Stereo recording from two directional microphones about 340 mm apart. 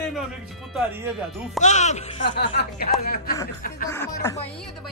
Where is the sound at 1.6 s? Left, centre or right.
Left.